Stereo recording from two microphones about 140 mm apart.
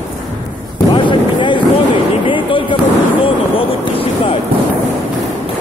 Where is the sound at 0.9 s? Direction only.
35° left (ahead or behind).